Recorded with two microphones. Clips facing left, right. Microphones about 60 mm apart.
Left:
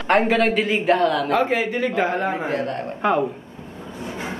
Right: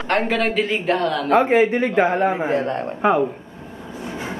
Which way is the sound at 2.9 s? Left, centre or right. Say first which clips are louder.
Right 2 dB; centre.